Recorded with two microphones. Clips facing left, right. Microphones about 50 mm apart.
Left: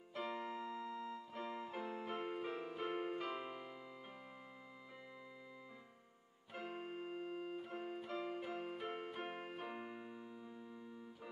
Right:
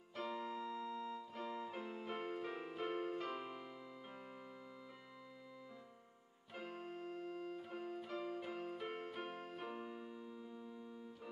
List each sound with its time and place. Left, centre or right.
0.1 s keyboard: centre
1.3 s music: left
1.7 s keyboard: centre
6.5 s keyboard: centre